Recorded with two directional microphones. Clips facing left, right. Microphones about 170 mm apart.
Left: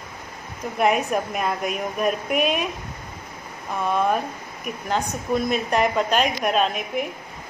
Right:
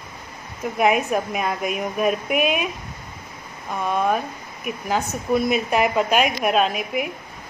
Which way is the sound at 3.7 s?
Centre (ahead or behind).